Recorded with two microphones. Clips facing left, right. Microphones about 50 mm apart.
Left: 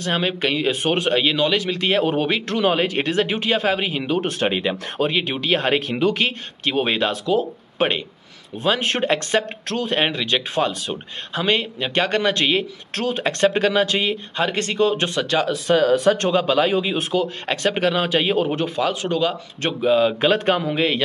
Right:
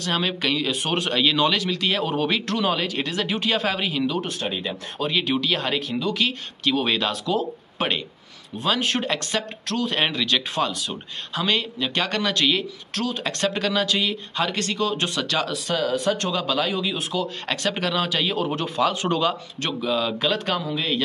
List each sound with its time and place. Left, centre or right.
0.0 s speech: centre
1.3 s speech: centre
1.6 s speech: left
4.3 s speech: left
5.1 s speech: left
6.1 s speech: left
10.7 s speech: left
15.6 s speech: left
18.6 s speech: centre
18.9 s speech: centre
19.6 s speech: left
20.7 s speech: left